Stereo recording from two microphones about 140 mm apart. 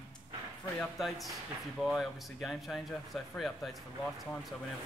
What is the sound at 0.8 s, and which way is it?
Speech, centre (ahead or behind).